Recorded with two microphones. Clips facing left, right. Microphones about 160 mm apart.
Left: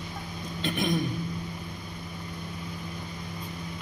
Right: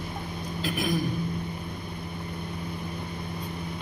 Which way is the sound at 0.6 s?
5° right (ahead or behind).